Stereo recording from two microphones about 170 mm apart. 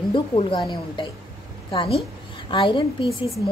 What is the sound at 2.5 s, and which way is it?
Speech, 30° left (ahead or behind).